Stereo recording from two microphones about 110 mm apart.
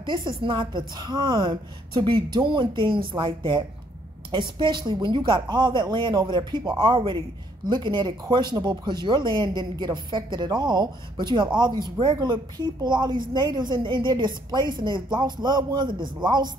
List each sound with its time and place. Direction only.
0.0 s a woman's voice: 45° right (ahead or behind)